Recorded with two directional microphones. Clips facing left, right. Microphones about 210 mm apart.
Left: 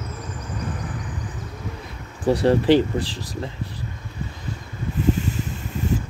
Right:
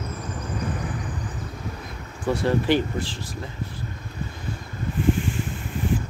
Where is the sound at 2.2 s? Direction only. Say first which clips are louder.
Left 5 dB; 35° left (ahead or behind).